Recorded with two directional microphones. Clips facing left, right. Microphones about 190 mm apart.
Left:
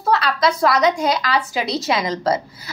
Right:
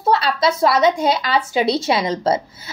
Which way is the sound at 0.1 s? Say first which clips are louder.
Right 1 dB; 30° right (ahead or behind).